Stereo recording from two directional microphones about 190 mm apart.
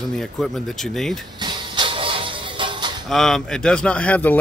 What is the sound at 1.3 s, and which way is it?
Music, 25° right (ahead or behind).